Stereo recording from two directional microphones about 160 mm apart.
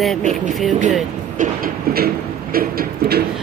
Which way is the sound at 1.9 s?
70° right (ahead or behind).